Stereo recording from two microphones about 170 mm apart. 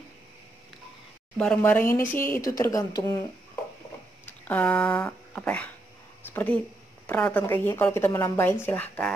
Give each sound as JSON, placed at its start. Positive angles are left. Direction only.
{"t": 1.4, "sound": "a woman's voice", "side_deg": 10}
{"t": 4.5, "sound": "a woman's voice", "side_deg": 10}